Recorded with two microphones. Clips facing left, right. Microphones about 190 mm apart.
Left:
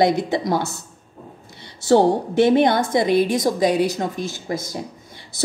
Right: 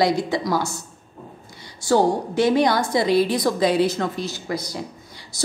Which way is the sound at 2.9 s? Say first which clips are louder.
Left 1 dB; 20° left (ahead or behind).